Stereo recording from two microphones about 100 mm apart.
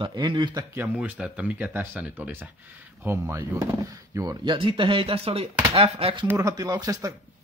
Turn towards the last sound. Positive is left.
turn(degrees=-35)  # may be behind; listen again after turning